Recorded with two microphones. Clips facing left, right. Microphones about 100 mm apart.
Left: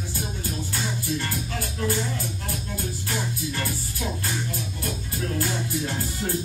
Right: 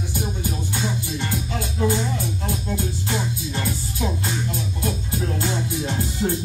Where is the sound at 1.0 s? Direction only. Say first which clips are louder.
Right 1 dB; 20° right (ahead or behind).